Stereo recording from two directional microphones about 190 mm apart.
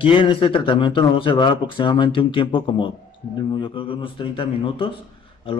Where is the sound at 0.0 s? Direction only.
30° left (ahead or behind).